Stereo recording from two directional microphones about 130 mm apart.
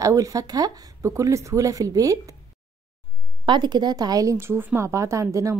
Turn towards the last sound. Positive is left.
turn(degrees=-25)  # may be behind; listen again after turning